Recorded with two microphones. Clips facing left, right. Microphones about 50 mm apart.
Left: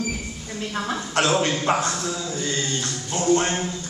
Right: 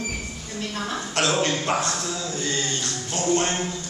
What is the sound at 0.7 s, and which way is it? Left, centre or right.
A woman's voice, centre.